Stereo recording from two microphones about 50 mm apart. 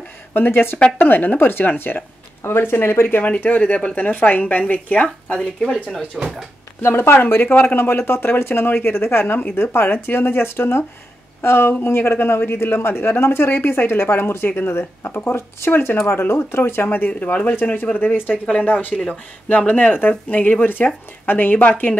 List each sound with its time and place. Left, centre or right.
0.3 s speech: left
2.4 s speech: left
3.2 s speech: left
5.3 s speech: centre
6.2 s speech: centre
6.8 s speech: left
9.2 s speech: left
9.6 s speech: left
17.1 s speech: left